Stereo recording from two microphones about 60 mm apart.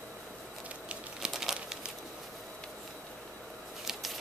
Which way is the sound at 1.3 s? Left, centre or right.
Centre.